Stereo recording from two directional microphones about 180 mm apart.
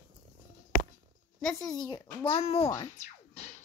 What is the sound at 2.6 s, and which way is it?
Speech, 20° left (ahead or behind).